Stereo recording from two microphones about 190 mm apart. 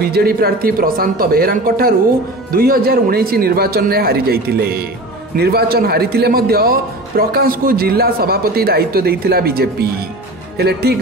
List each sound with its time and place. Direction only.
0.0 s a man's voice: 55° right (ahead or behind)